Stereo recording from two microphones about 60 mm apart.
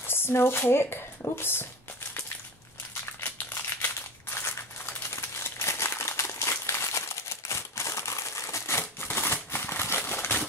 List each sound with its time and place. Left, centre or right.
0.0 s speech: left
3.5 s crumpling: left